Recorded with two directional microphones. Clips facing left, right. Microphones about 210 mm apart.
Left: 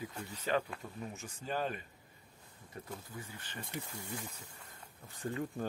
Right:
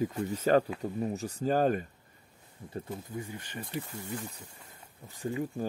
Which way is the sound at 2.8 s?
20° right (ahead or behind).